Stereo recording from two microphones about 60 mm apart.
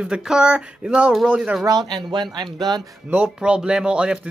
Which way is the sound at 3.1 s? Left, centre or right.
Centre.